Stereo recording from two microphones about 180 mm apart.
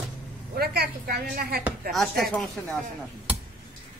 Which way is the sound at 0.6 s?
60° right (ahead or behind).